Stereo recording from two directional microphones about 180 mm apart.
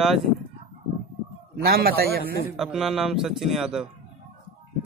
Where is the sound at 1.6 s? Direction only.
55° right (ahead or behind).